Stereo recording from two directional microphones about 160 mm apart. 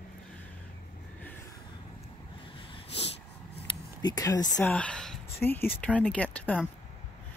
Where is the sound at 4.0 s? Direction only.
25° left (ahead or behind).